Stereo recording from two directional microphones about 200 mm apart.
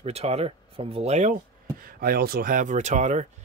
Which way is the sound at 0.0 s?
30° right (ahead or behind).